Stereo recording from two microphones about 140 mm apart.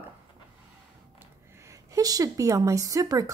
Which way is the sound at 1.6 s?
25° right (ahead or behind).